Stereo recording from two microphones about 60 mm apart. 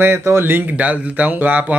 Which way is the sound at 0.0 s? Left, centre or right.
Right.